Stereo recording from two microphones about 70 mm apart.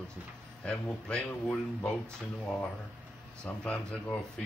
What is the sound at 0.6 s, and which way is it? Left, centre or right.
Speech, centre.